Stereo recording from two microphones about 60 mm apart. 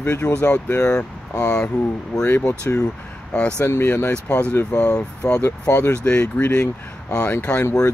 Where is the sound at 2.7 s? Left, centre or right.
Left.